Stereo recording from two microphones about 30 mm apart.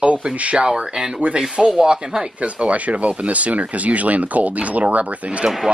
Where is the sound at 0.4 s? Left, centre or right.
Right.